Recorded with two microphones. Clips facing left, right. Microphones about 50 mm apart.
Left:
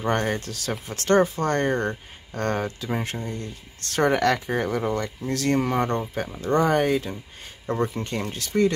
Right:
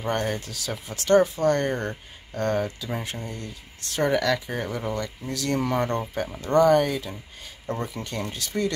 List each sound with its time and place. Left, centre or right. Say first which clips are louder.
0.0 s speech: left 2 dB; left
3.8 s speech: left 3 dB; left